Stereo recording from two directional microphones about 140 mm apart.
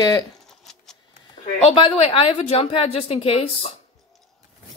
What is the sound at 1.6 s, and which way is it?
A woman's voice, 40° left (ahead or behind).